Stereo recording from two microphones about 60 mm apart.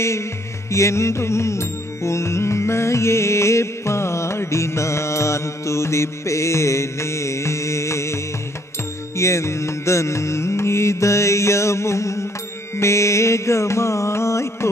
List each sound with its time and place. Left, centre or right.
0.7 s music: left